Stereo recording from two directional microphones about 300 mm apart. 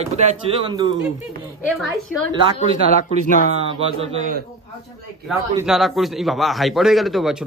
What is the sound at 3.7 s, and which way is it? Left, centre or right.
Speech, centre.